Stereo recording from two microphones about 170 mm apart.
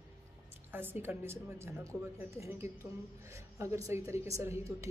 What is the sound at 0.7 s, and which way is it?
Speech, 15° right (ahead or behind).